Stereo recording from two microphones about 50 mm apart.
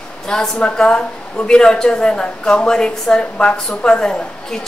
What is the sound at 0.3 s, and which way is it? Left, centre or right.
A woman's voice, centre.